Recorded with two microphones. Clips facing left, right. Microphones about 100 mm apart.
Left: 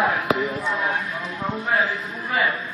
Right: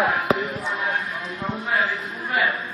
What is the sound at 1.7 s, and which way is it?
Speech, centre (ahead or behind).